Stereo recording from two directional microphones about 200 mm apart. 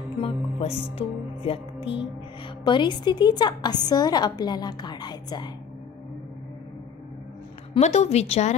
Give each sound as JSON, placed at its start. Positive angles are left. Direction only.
{"t": 0.2, "sound": "music", "side_deg": 30}
{"t": 1.9, "sound": "a woman's voice", "side_deg": 25}
{"t": 7.7, "sound": "a woman's voice", "side_deg": 35}